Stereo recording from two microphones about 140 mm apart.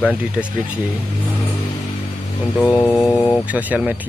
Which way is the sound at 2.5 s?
25° left (ahead or behind).